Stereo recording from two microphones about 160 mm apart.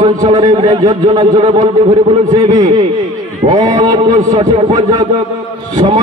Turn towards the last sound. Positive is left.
turn(degrees=-25)  # may be behind; listen again after turning